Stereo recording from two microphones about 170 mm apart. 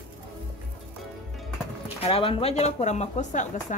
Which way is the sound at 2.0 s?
35° left (ahead or behind).